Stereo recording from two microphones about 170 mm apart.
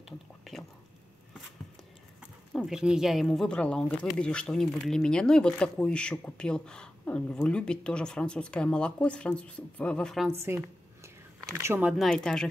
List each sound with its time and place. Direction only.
0.5 s whispering: centre (ahead or behind)
2.5 s speech: centre (ahead or behind)
10.3 s a sound: 15° right (ahead or behind)
12.0 s speech: 5° left (ahead or behind)